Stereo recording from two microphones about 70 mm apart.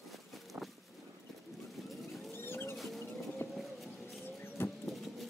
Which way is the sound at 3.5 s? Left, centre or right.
Centre.